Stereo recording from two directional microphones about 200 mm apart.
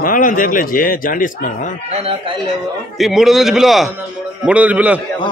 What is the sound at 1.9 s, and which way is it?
Speech, 30° right (ahead or behind).